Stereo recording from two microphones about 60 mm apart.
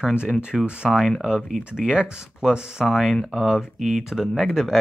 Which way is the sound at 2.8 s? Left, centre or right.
Centre.